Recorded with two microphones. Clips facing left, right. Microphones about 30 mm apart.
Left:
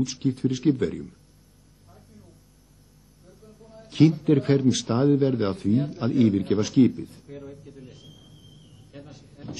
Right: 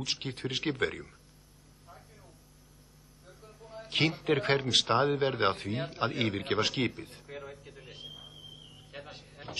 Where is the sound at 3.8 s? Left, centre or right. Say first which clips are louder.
Left 9 dB; right.